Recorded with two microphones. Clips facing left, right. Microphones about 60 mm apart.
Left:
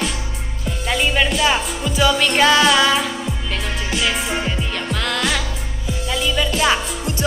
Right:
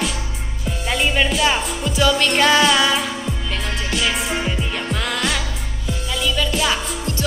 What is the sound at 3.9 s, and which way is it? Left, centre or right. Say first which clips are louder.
Music: left 1 dB; centre.